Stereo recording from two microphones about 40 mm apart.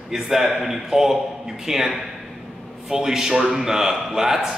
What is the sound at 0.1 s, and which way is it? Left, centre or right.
A man's voice, centre.